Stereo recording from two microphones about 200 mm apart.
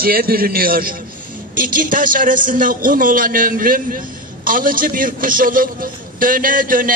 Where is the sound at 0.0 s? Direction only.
45° right (ahead or behind).